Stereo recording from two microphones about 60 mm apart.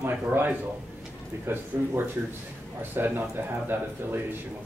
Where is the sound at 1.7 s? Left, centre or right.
Right.